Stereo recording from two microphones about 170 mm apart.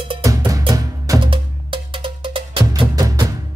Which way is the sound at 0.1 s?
25° right (ahead or behind).